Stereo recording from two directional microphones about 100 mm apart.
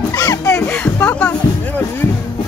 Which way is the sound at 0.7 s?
15° left (ahead or behind).